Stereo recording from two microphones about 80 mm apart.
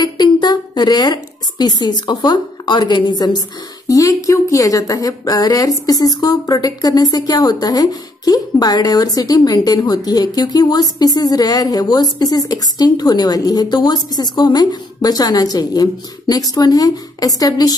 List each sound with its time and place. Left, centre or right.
0.0 s a woman's voice: left